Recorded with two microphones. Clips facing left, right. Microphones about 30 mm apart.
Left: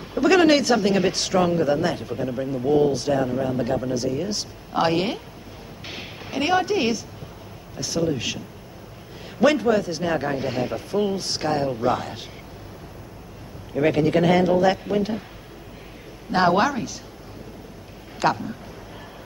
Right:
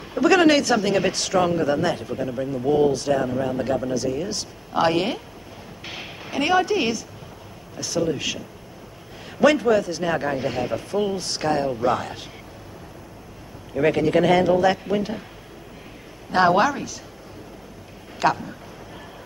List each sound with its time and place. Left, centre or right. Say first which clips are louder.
0.2 s speech: even; centre
2.1 s speech: even; centre
3.9 s speech: even; left
5.9 s a sound: right 1 dB; centre
7.7 s speech: even; centre
9.4 s speech: right 1 dB; centre
10.0 s speech: right 1 dB; centre
13.7 s speech: right 1 dB; centre
16.3 s speech: right 1 dB; centre
18.2 s speech: right 1 dB; left